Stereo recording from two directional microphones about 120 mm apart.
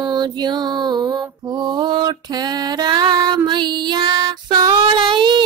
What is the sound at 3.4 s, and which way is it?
Female singing, 40° right (ahead or behind).